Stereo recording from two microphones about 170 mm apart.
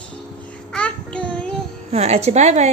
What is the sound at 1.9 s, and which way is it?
Speech, 40° right (ahead or behind).